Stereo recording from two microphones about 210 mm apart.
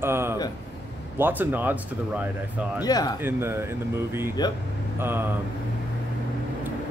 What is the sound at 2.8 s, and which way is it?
Speech, 20° left (ahead or behind).